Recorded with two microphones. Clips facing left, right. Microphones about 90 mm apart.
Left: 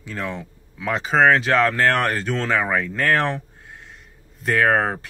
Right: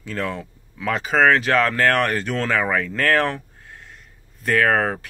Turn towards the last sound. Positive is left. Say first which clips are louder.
# even
turn(degrees=25)  # may be behind; listen again after turning